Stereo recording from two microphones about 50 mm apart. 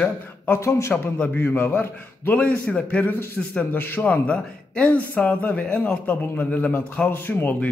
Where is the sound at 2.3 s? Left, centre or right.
Left.